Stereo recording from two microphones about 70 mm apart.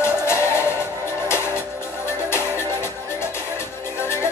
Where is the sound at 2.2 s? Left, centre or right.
Left.